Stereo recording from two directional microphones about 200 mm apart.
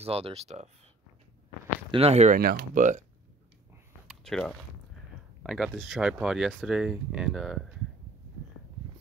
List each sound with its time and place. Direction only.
0.0 s speech: 30° right (ahead or behind)
1.9 s speech: 30° right (ahead or behind)
4.1 s speech: centre (ahead or behind)